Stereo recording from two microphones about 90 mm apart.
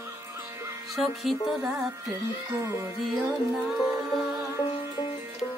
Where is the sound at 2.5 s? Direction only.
35° right (ahead or behind).